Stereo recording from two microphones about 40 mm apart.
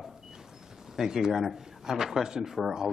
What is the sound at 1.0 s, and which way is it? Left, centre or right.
Speech, centre.